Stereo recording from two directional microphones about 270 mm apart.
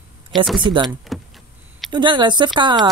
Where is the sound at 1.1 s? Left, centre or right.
Centre.